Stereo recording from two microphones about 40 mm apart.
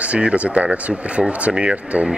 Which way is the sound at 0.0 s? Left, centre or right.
Right.